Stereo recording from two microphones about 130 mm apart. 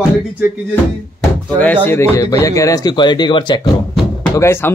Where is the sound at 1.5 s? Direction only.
10° left (ahead or behind); by 3.7 s 35° left (ahead or behind).